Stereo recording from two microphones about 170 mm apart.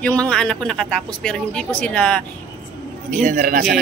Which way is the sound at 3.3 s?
50° right (ahead or behind).